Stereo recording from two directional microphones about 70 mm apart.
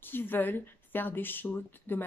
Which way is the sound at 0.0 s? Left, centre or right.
Left.